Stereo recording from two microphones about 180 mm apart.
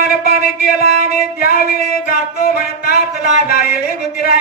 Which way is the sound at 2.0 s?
60° left (ahead or behind).